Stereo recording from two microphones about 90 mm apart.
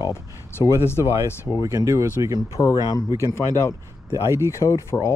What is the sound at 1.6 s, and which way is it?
Speech, 40° right (ahead or behind).